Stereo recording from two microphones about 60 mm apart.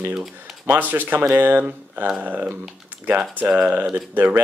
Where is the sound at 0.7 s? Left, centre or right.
Right.